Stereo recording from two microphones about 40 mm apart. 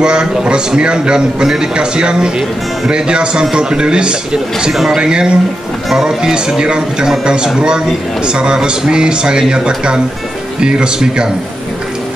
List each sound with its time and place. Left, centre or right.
0.0 s a man's voice: right